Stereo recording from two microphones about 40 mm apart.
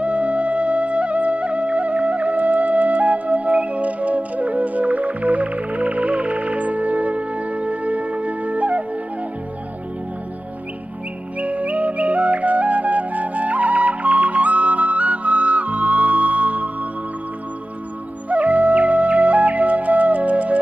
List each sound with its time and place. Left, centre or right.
0.0 s music: right
11.3 s music: right
18.3 s music: right